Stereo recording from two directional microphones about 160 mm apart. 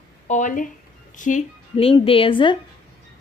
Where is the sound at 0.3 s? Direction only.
55° left (ahead or behind).